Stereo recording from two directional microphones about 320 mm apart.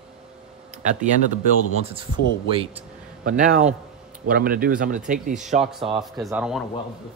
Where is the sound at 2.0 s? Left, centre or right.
Centre.